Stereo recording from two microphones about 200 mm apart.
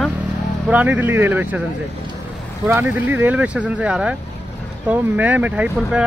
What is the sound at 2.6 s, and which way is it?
Speech, 10° right (ahead or behind).